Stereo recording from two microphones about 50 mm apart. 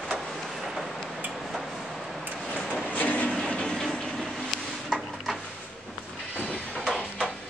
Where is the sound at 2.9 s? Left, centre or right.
Left.